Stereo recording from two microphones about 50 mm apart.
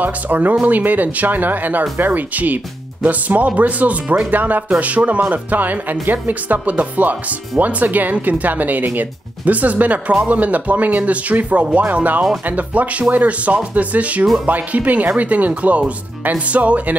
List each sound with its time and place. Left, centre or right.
0.0 s speech: right